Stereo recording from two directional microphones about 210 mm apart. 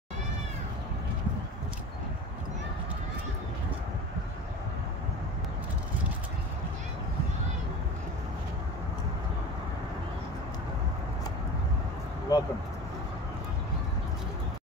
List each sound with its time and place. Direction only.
12.3 s vehicle: 15° left (ahead or behind)